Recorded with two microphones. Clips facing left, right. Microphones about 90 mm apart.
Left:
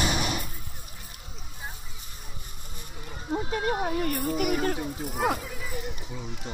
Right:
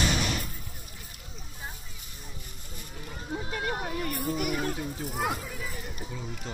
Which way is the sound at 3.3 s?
30° left (ahead or behind).